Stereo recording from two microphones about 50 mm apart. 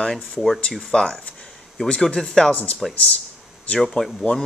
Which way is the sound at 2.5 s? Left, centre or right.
Left.